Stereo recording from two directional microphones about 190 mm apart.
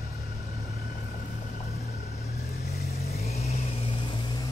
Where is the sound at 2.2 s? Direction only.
55° left (ahead or behind).